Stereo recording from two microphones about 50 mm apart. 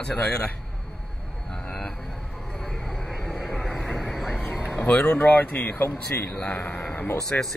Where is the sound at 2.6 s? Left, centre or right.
Centre.